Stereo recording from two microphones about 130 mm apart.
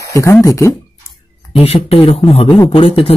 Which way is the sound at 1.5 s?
50° left (ahead or behind).